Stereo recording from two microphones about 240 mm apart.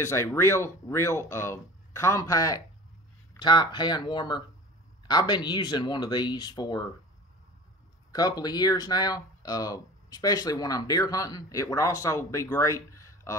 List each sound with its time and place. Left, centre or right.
0.0 s speech: centre
8.1 s speech: centre